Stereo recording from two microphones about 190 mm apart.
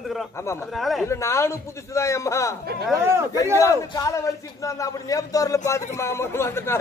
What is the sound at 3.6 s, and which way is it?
A man's voice, 15° left (ahead or behind).